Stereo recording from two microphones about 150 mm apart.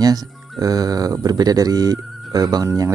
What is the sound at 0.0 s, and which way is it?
Speech, 25° right (ahead or behind).